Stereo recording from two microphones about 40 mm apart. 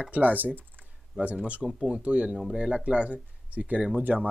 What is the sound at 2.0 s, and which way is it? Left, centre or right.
Speech, right.